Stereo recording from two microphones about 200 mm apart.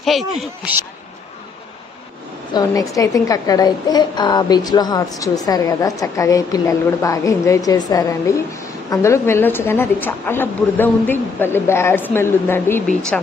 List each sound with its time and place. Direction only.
0.0 s a man's voice: centre (ahead or behind)
2.5 s a woman's voice: 15° left (ahead or behind)